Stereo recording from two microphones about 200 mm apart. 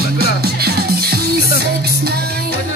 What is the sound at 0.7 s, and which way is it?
Music, 50° right (ahead or behind).